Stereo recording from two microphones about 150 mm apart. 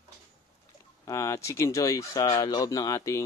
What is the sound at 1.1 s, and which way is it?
A man's voice, 20° left (ahead or behind).